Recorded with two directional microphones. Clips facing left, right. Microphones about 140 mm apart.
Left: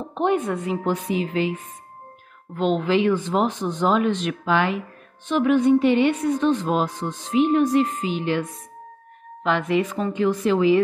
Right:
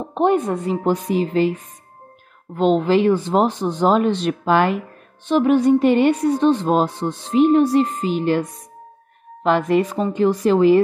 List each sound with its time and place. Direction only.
0.1 s speech: 40° right (ahead or behind)
2.5 s speech: 35° right (ahead or behind)